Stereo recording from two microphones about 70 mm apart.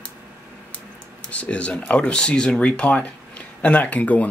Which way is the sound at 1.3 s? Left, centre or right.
Centre.